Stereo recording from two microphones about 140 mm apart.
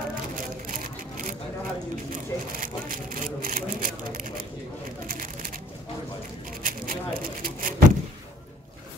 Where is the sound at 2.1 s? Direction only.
85° right.